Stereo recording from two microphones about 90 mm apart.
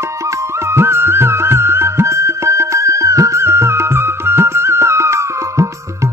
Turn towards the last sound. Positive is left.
turn(degrees=-35)  # may be behind; listen again after turning